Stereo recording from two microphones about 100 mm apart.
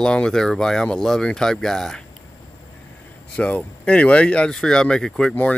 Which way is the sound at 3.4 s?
10° left (ahead or behind).